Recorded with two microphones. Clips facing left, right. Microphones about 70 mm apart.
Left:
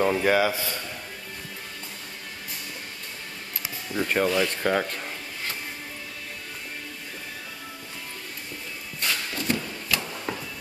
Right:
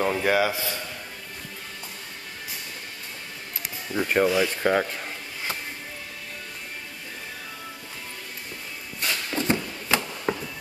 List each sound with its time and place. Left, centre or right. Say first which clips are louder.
0.0 s a man's voice: left 1 dB; centre
3.9 s speech: right 2 dB; centre
9.3 s a sound: right 3 dB; right